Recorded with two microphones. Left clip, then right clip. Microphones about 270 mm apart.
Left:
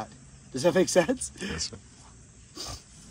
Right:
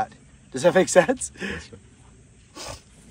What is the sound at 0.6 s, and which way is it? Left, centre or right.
Speech, right.